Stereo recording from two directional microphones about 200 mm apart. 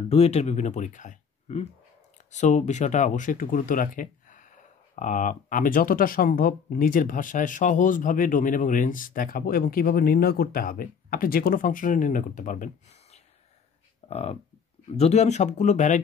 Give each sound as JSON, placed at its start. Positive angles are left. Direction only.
{"t": 0.1, "sound": "speech", "side_deg": 30}